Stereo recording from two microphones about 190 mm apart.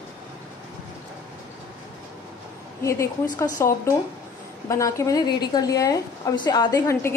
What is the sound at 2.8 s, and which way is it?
A woman's voice, 15° left (ahead or behind).